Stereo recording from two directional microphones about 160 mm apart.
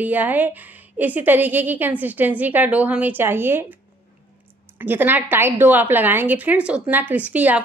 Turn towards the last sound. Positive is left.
turn(degrees=-10)  # may be behind; listen again after turning